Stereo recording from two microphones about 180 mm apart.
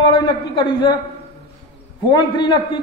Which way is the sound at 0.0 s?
25° left (ahead or behind).